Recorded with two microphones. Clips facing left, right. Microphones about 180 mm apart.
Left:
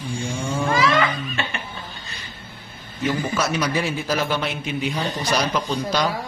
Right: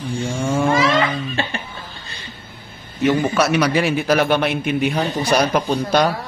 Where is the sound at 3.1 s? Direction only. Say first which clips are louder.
Right 6 dB; 70° right (ahead or behind).